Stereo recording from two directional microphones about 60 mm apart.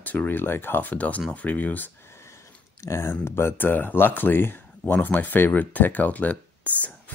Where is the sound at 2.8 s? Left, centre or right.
Left.